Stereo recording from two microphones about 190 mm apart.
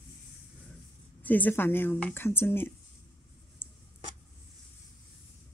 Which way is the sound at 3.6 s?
10° left (ahead or behind).